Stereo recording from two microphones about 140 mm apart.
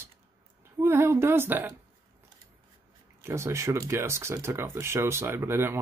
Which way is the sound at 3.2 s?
20° right (ahead or behind).